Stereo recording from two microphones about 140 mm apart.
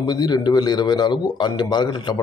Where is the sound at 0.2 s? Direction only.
30° left (ahead or behind).